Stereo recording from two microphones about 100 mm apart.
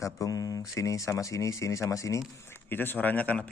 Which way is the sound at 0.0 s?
35° left (ahead or behind).